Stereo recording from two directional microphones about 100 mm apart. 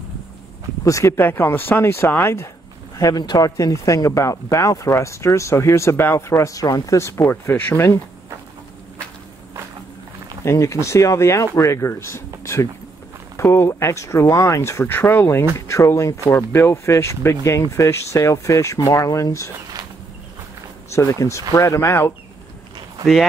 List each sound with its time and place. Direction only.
0.8 s speech: 30° left (ahead or behind)
3.0 s speech: 40° left (ahead or behind); by 8.0 s 25° left (ahead or behind)
10.4 s speech: 30° left (ahead or behind)
20.9 s speech: 30° left (ahead or behind)